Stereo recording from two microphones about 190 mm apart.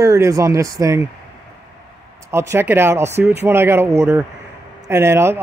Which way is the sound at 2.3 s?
10° right (ahead or behind).